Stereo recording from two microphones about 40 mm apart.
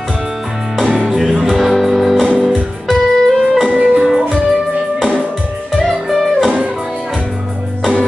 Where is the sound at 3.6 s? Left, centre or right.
Right.